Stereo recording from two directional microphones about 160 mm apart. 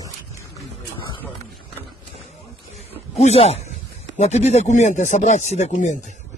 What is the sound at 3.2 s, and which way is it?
Speech, 40° left (ahead or behind).